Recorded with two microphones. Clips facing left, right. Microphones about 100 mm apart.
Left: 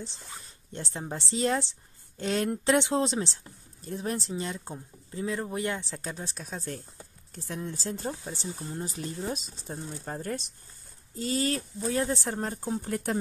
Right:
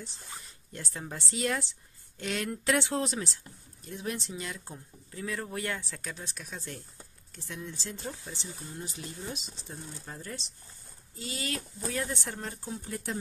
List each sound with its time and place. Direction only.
0.0 s speech: 30° left (ahead or behind); by 10.5 s 50° left (ahead or behind)
11.1 s speech: 40° left (ahead or behind); by 13.2 s 55° left (ahead or behind)